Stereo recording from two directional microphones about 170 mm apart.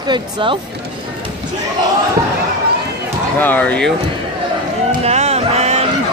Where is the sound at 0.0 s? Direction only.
30° right (ahead or behind).